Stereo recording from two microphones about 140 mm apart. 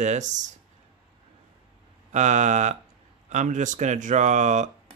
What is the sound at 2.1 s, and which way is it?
Speech, 60° right (ahead or behind).